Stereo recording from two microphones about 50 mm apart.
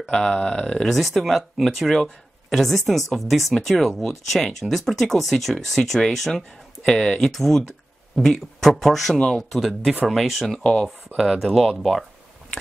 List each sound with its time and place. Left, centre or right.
0.1 s speech: centre
0.9 s speech: centre
10.6 s speech: centre
11.1 s speech: centre